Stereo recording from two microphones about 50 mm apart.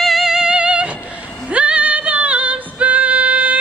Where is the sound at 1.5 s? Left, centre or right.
Right.